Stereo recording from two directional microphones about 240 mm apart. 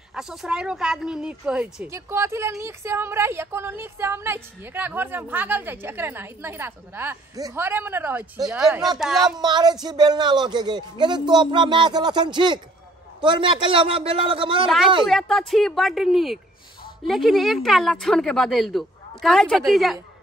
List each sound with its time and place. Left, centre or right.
0.1 s a woman's voice: centre
9.4 s a woman's voice: centre
15.0 s a woman's voice: centre